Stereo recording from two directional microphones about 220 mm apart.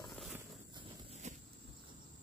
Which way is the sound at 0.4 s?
20° right (ahead or behind).